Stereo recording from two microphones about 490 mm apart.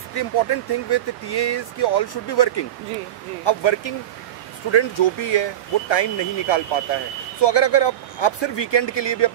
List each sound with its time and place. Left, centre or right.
0.1 s speech: left
3.4 s speech: left